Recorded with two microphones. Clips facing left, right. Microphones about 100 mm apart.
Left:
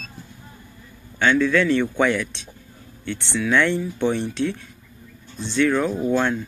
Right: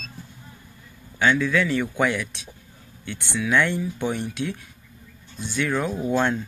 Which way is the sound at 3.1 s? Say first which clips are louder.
Left 2 dB; 15° right (ahead or behind).